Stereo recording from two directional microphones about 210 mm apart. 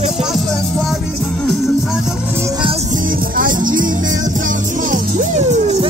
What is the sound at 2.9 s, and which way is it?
Music, 40° right (ahead or behind).